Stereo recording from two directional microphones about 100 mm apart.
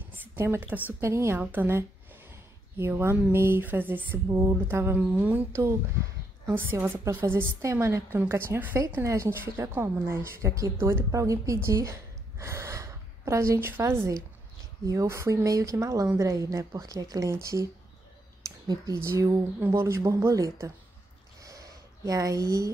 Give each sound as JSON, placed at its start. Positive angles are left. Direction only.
{"t": 0.2, "sound": "a sound", "side_deg": -20}
{"t": 1.0, "sound": "a woman's voice", "side_deg": -30}
{"t": 5.5, "sound": "a woman's voice", "side_deg": -30}
{"t": 11.1, "sound": "speech", "side_deg": -35}
{"t": 19.0, "sound": "a woman's voice", "side_deg": -35}
{"t": 21.4, "sound": "a sound", "side_deg": -35}